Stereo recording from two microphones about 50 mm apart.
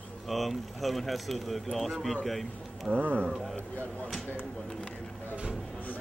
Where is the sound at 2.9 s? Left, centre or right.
Right.